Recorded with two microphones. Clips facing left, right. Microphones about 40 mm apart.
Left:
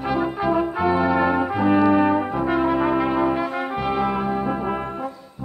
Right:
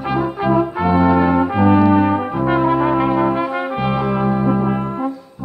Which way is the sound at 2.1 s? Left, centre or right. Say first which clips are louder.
Right 3 dB; centre.